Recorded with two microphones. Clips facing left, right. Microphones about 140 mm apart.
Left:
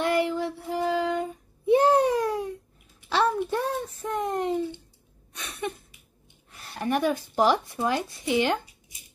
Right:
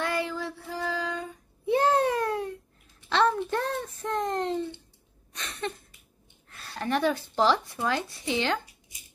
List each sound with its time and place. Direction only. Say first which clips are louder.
0.0 s child singing: left 5 dB; 20° left (ahead or behind)
3.1 s a sound: even; 10° left (ahead or behind)
6.5 s speech: left 2 dB; 20° left (ahead or behind)